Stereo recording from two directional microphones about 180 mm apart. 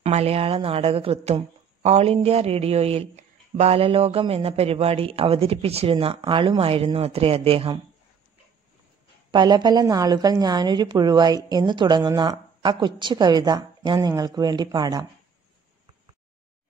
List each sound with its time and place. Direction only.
0.0 s a woman's voice: 35° right (ahead or behind)
9.3 s a woman's voice: 25° right (ahead or behind)